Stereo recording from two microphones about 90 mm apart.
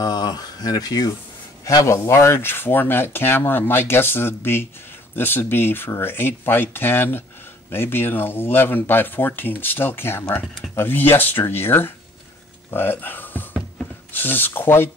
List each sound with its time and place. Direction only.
0.0 s speech: 50° left (ahead or behind); by 14.9 s 25° left (ahead or behind)